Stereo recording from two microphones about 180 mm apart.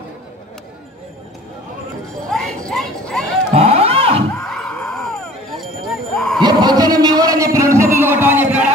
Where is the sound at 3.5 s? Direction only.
35° right (ahead or behind).